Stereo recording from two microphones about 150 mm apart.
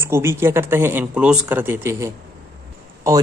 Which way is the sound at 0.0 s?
15° right (ahead or behind).